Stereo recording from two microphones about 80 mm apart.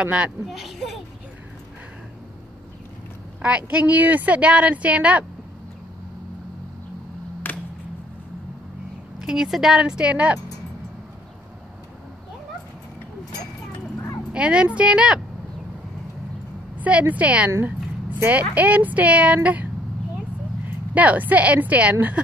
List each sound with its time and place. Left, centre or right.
0.0 s speech: centre
0.5 s speech: centre
3.4 s speech: centre
7.5 s music: left
9.2 s speech: centre
14.3 s speech: centre
16.8 s speech: centre
18.5 s a woman's voice: centre